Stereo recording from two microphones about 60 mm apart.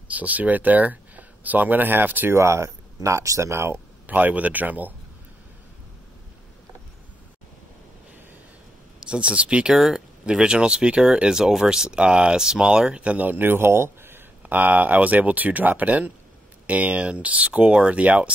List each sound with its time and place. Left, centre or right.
0.1 s speech: right
2.3 s speech: right
4.1 s speech: right
9.1 s speech: centre
9.8 s speech: centre; by 14.2 s right
14.4 s speech: right